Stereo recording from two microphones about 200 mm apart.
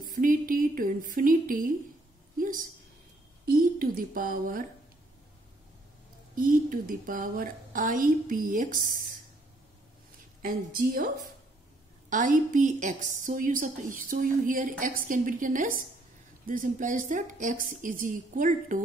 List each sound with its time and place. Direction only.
0.0 s a woman's voice: 45° right (ahead or behind)
6.3 s a woman's voice: 45° right (ahead or behind)
10.4 s a woman's voice: 45° right (ahead or behind)
12.1 s a woman's voice: 40° right (ahead or behind)